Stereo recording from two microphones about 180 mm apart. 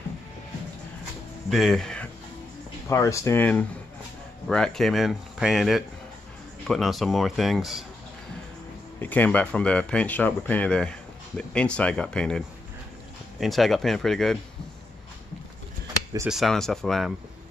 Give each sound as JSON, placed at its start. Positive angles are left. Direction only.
{"t": 1.5, "sound": "speech", "side_deg": 0}
{"t": 2.9, "sound": "speech", "side_deg": 15}
{"t": 9.0, "sound": "speech", "side_deg": 10}
{"t": 16.3, "sound": "speech", "side_deg": 0}